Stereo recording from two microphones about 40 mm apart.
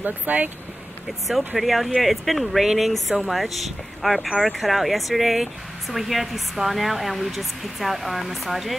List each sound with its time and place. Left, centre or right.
0.0 s speech: right
1.6 s speech: centre